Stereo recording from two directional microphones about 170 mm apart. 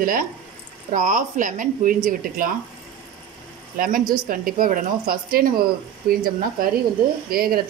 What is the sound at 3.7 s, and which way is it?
Speech, 55° right (ahead or behind).